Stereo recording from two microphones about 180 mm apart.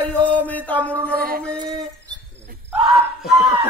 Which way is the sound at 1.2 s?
55° right (ahead or behind).